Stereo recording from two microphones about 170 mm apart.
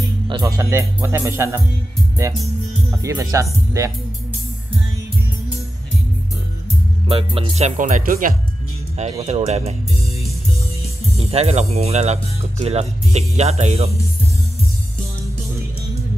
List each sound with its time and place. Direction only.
0.3 s speech: 20° right (ahead or behind)
3.0 s speech: 20° right (ahead or behind)
7.1 s speech: 30° right (ahead or behind); by 8.4 s 55° right (ahead or behind)
9.2 s speech: 40° right (ahead or behind)
11.1 s speech: 35° right (ahead or behind)